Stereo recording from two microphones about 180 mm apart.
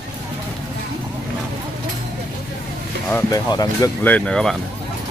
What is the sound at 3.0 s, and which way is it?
Speech, 10° left (ahead or behind).